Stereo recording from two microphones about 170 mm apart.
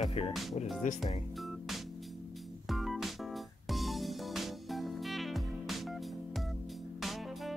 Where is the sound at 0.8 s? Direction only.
50° left (ahead or behind).